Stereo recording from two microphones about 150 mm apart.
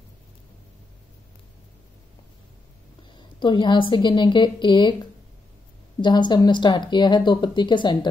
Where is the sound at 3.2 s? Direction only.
30° left (ahead or behind).